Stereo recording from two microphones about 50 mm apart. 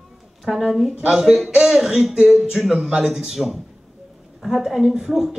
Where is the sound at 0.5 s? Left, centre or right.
Centre.